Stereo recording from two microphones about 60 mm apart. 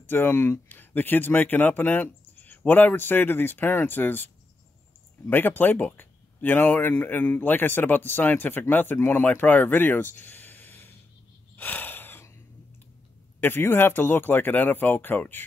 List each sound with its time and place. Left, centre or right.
0.0 s a man's voice: left
5.3 s a man's voice: left
11.5 s a sound: left
13.4 s a man's voice: left